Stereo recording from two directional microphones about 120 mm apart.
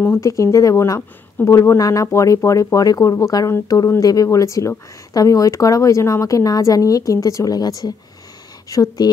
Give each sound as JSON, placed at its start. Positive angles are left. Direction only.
{"t": 0.0, "sound": "a woman's voice", "side_deg": 20}